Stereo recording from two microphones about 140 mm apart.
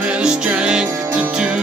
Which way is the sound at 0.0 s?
10° right (ahead or behind).